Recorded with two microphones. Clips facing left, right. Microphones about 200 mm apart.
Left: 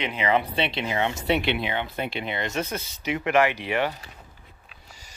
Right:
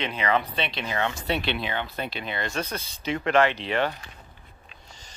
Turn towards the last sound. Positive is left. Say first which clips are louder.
# right 1 dB
turn(degrees=10)  # may be behind; listen again after turning